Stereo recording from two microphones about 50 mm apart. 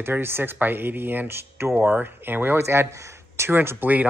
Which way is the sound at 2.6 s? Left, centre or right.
Right.